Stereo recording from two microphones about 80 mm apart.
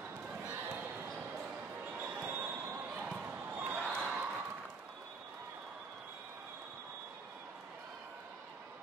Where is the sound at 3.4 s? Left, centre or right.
Right.